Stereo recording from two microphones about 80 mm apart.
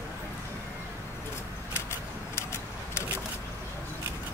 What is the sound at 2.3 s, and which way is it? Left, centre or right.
Vehicle, left.